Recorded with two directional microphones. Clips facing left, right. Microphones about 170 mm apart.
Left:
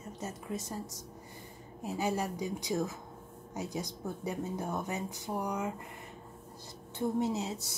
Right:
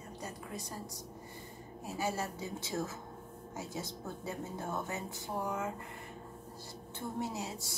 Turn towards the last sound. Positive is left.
turn(degrees=20)  # may be behind; listen again after turning